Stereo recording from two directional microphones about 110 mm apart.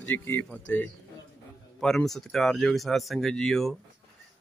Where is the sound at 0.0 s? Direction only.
20° left (ahead or behind).